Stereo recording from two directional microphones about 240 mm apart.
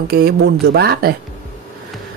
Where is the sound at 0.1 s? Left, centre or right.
Right.